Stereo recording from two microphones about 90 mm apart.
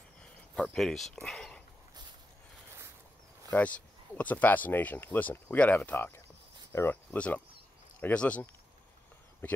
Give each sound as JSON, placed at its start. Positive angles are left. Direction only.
{"t": 0.2, "sound": "a sound", "side_deg": 5}
{"t": 1.2, "sound": "speech", "side_deg": 5}
{"t": 3.4, "sound": "speech", "side_deg": 15}
{"t": 7.1, "sound": "speech", "side_deg": 15}